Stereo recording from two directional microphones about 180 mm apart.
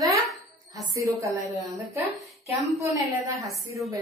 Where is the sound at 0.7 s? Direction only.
20° right (ahead or behind).